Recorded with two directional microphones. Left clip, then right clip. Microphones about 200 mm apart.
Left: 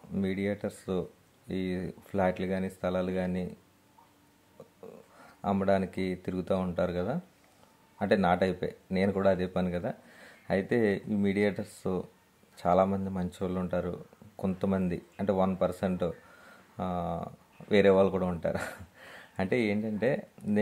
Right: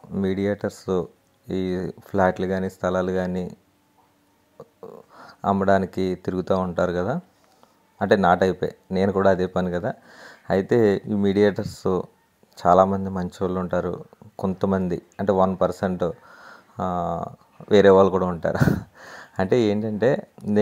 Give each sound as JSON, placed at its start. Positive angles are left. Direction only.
{"t": 0.1, "sound": "speech", "side_deg": -25}
{"t": 4.6, "sound": "speech", "side_deg": -25}